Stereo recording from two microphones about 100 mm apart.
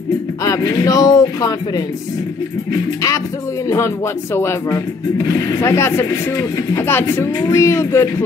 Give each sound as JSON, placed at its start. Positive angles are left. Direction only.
{"t": 0.4, "sound": "speech", "side_deg": 35}
{"t": 3.6, "sound": "speech", "side_deg": 30}